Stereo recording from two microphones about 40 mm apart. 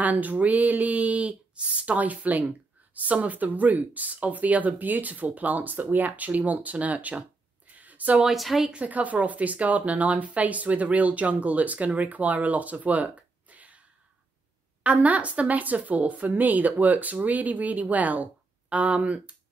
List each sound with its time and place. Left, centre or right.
0.0 s speech: right
7.7 s a sound: right
8.3 s a woman's voice: centre
8.8 s speech: right
14.8 s speech: right